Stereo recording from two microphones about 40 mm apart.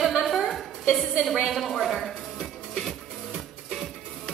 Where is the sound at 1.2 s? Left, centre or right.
Centre.